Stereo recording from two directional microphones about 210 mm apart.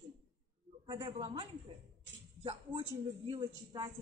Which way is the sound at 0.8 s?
25° right (ahead or behind).